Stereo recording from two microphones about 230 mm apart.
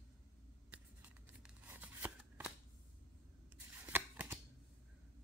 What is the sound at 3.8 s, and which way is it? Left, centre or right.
Scissors, centre.